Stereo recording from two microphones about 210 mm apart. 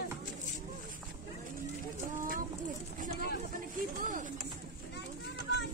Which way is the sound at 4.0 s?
40° right (ahead or behind).